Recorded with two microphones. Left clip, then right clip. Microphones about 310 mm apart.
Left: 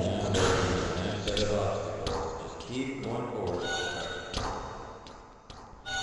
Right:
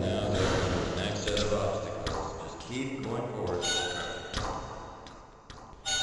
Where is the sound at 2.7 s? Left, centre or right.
Centre.